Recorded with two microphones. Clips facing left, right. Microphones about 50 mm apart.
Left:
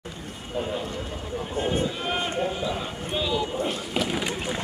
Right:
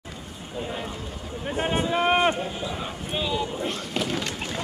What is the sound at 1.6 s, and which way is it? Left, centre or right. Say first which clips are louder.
Speech: right 4 dB; right.